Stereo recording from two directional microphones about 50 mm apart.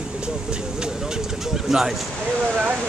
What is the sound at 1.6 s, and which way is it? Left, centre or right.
Speech, centre.